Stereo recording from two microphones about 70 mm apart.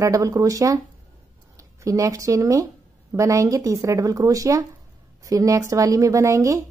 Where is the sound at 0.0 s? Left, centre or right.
Right.